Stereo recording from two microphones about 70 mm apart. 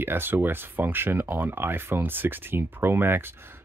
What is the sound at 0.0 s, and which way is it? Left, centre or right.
Speech, right.